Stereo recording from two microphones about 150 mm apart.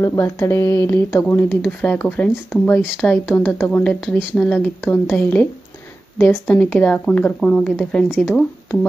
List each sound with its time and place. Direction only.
0.0 s speech: 20° left (ahead or behind)
2.8 s speech: 5° right (ahead or behind)
3.3 s speech: 10° left (ahead or behind)